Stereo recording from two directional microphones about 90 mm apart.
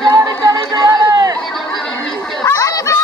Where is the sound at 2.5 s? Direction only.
40° left (ahead or behind).